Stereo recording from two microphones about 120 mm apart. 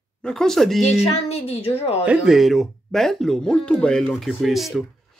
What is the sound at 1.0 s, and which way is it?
Speech, 60° left (ahead or behind).